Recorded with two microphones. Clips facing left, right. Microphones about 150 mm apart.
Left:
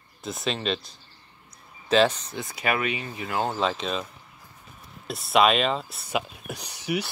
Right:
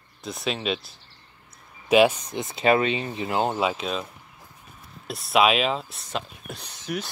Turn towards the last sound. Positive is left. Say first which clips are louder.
# left 3 dB
turn(degrees=10)  # may be behind; listen again after turning